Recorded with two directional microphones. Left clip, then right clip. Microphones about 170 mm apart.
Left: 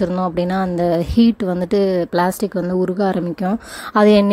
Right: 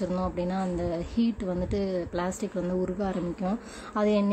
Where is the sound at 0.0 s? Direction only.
50° left (ahead or behind).